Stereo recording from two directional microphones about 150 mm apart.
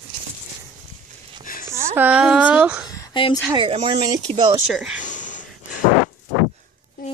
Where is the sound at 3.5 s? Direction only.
35° right (ahead or behind).